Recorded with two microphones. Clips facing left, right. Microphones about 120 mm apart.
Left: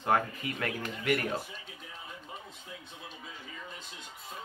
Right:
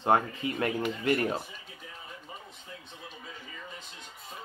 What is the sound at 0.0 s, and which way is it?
Speech, 25° right (ahead or behind).